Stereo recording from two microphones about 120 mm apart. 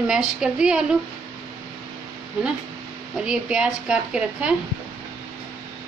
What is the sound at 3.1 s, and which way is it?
Speech, 5° right (ahead or behind).